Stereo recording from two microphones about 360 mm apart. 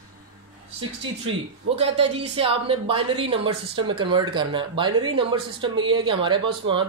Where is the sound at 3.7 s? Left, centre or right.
Right.